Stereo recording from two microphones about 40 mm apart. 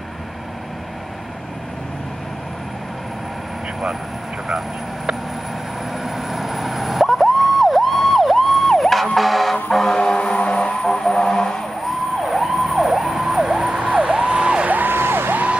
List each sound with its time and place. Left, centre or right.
6.0 s emergency vehicle: centre
9.7 s siren: centre; by 10.7 s left
10.8 s vehicle: centre
12.3 s emergency vehicle: centre; by 14.7 s right
14.9 s a sound: right